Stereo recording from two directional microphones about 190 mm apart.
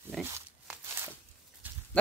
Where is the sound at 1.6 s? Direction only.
10° right (ahead or behind).